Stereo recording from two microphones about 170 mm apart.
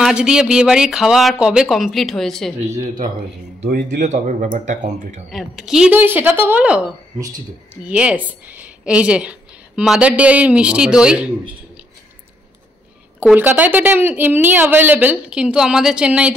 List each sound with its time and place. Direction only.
0.0 s speech: 5° right (ahead or behind)
2.8 s speech: 50° right (ahead or behind)
5.3 s a woman's voice: centre (ahead or behind)
7.2 s speech: 20° right (ahead or behind)
7.8 s a woman's voice: 5° right (ahead or behind)
13.2 s a woman's voice: 10° right (ahead or behind)